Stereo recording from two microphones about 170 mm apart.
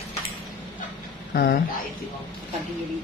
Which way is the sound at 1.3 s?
65° left (ahead or behind).